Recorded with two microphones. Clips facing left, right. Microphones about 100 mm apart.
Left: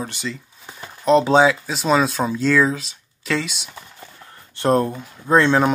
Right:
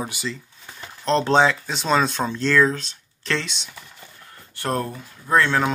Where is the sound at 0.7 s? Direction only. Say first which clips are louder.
Left 6 dB; 5° left (ahead or behind).